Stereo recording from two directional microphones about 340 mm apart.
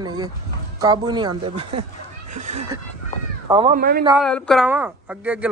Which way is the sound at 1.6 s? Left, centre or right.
Right.